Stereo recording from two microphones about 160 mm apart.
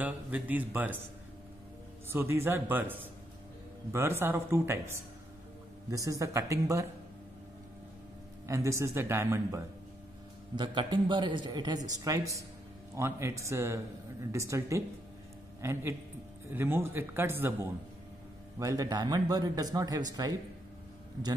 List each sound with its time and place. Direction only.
0.0 s speech: 10° right (ahead or behind)
2.0 s speech: 15° right (ahead or behind)
8.5 s speech: 20° right (ahead or behind)
10.5 s speech: 30° right (ahead or behind)